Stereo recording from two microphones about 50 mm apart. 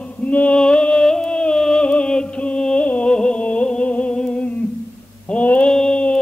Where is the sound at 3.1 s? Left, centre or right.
Centre.